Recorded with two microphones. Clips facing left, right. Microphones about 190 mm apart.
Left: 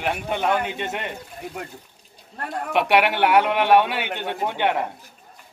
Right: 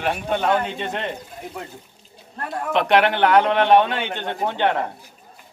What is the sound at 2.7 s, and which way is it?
Speech, 10° left (ahead or behind).